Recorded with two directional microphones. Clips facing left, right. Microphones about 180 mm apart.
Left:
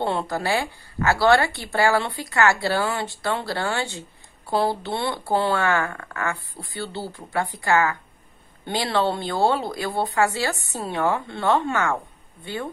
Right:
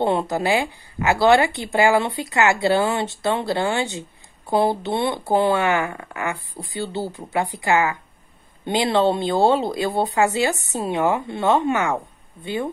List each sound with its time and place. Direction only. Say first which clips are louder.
0.0 s a woman's voice: right 4 dB; 20° right (ahead or behind)